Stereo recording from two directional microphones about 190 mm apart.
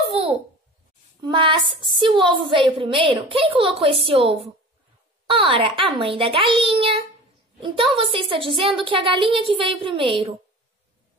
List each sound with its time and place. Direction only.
1.2 s a woman's voice: 25° right (ahead or behind)